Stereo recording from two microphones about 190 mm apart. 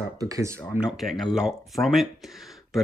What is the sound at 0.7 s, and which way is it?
Speech, 5° right (ahead or behind).